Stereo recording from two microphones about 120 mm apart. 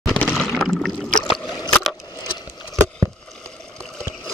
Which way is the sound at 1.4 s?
35° left (ahead or behind).